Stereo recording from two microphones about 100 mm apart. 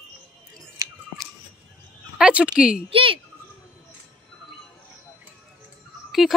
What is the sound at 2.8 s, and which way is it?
Speech, 65° right (ahead or behind).